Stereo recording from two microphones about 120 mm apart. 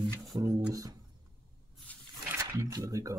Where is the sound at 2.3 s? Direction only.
20° right (ahead or behind).